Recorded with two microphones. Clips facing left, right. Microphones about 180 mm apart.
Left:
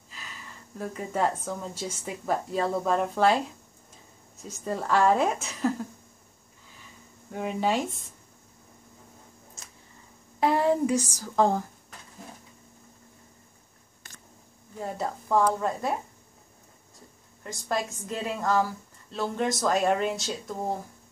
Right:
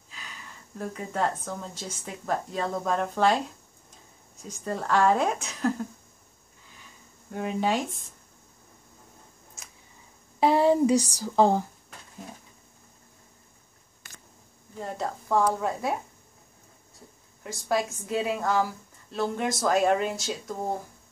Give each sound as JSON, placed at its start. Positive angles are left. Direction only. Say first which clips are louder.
{"t": 0.1, "sound": "speech", "louder": "even", "side_deg": 0}
{"t": 6.8, "sound": "a sound", "louder": "left 4 dB", "side_deg": 0}
{"t": 10.4, "sound": "a sound", "louder": "right 3 dB", "side_deg": -25}
{"t": 11.3, "sound": "speech", "louder": "right 2 dB", "side_deg": -25}
{"t": 14.8, "sound": "speech", "louder": "even", "side_deg": 5}
{"t": 17.4, "sound": "speech", "louder": "right 3 dB", "side_deg": -5}